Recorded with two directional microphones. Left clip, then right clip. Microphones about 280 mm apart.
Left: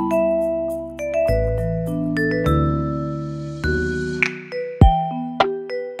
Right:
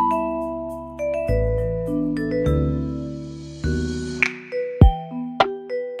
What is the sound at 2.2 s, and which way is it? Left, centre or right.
Music, left.